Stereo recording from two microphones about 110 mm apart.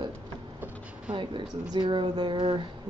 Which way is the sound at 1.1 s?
45° right (ahead or behind).